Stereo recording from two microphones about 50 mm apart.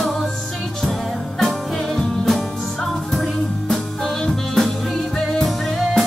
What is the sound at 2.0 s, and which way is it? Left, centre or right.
Music, centre.